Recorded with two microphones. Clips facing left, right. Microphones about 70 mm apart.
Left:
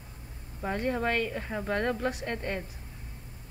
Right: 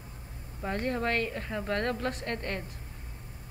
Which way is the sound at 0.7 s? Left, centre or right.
Centre.